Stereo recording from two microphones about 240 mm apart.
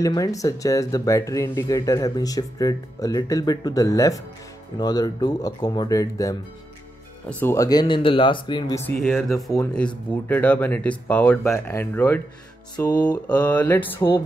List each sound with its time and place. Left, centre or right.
0.0 s speech: centre
8.9 s speech: centre
13.3 s speech: centre